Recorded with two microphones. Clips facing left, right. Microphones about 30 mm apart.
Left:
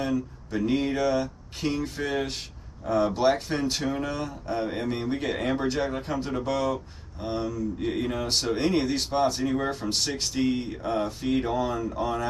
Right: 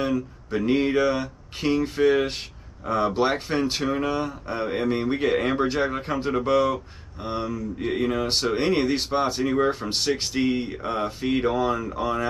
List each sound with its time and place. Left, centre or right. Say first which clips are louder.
0.1 s a man's voice: right 2 dB; right
7.2 s a man's voice: right 1 dB; centre